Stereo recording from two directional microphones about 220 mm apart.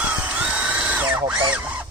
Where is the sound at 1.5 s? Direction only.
5° right (ahead or behind).